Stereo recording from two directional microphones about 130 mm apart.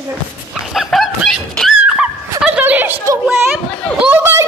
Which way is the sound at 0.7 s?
Centre (ahead or behind).